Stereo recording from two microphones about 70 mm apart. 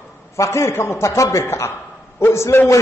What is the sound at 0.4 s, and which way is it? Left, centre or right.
A man's voice, left.